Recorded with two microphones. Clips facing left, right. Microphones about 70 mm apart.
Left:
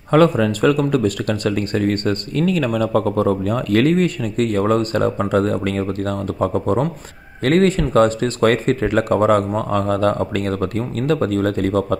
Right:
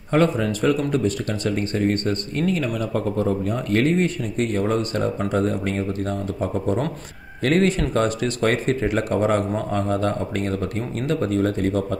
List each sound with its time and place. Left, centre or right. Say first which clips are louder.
0.1 s speech: left 5 dB; left
0.5 s speech: left 4 dB; left